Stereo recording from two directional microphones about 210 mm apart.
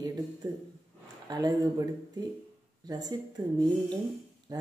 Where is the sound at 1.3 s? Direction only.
15° right (ahead or behind).